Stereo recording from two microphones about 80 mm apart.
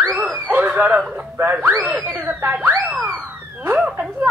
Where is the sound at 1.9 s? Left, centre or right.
Right.